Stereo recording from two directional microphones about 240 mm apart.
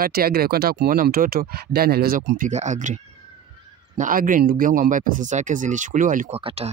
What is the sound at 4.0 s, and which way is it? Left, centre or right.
Speech, right.